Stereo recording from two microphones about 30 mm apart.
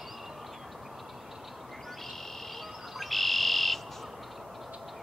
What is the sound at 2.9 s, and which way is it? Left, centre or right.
Bird, centre.